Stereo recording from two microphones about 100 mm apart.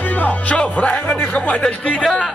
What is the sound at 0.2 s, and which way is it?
Speech, 15° left (ahead or behind).